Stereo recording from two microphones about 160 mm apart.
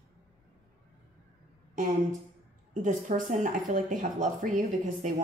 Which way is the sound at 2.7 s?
55° right (ahead or behind).